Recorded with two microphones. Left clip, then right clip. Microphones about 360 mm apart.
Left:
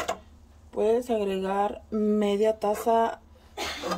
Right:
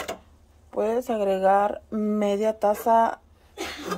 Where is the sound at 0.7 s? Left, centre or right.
Centre.